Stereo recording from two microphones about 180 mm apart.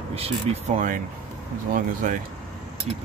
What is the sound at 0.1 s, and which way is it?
Speech, 35° right (ahead or behind).